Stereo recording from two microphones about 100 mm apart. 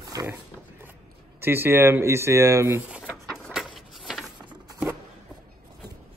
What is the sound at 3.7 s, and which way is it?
Mechanisms, centre (ahead or behind).